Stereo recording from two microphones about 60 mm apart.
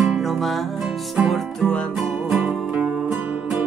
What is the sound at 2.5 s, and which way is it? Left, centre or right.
Music, centre.